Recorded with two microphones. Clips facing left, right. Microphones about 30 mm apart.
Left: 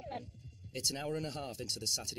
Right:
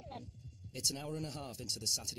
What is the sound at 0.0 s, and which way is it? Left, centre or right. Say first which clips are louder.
Music: left 5 dB; left.